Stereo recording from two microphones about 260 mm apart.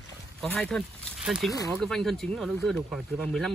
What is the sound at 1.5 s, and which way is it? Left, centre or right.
Speech, centre.